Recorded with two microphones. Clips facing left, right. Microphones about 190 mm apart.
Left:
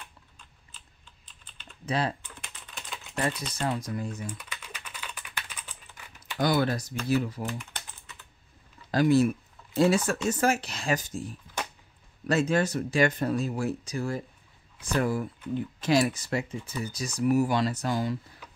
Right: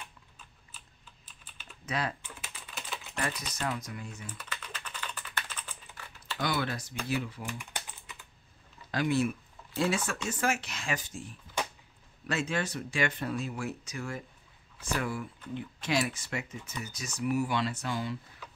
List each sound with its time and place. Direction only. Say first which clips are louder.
1.2 s typing: left 1 dB; 5° right (ahead or behind)
1.9 s speech: left 5 dB; 30° left (ahead or behind)
2.2 s typing: right 1 dB; centre (ahead or behind)
3.2 s speech: left 6 dB; 30° left (ahead or behind)
4.3 s typing: left 2 dB; 10° left (ahead or behind)
6.3 s speech: left 7 dB; 40° left (ahead or behind)
7.4 s typing: left 4 dB; 10° right (ahead or behind)
8.9 s speech: left 7 dB; 40° left (ahead or behind)